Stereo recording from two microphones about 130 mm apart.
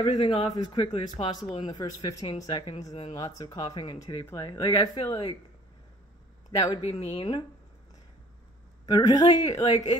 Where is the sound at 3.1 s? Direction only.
30° left (ahead or behind).